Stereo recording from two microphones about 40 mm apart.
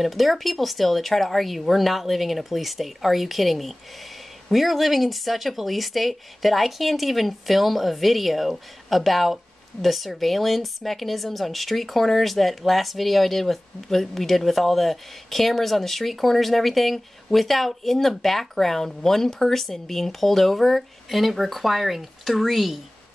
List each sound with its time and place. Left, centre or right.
0.0 s speech: centre